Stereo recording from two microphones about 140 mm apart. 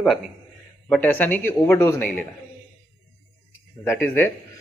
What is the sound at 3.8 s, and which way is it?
Speech, 15° left (ahead or behind).